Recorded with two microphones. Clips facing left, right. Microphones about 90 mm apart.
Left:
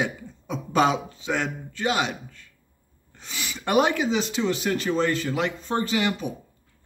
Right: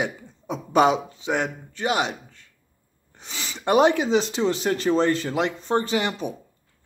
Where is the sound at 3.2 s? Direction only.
25° right (ahead or behind).